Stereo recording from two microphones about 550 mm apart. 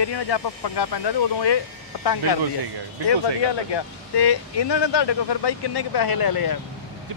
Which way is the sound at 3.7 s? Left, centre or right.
Left.